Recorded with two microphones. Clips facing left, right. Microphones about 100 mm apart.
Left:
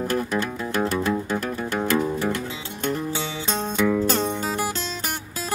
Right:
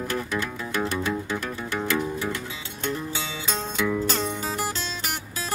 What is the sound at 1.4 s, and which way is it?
Music, 45° left (ahead or behind).